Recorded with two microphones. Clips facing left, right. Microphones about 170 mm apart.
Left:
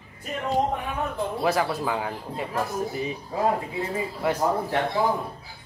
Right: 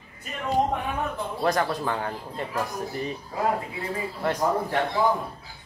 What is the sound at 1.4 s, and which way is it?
Speech, 5° left (ahead or behind).